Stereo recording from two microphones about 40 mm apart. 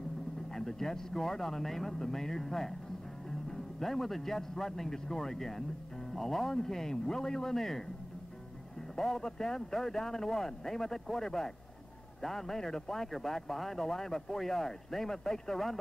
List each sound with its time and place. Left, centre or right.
0.5 s a man's voice: centre
8.9 s a man's voice: centre